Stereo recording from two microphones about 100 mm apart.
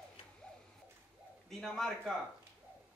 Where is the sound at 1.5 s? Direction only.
5° left (ahead or behind).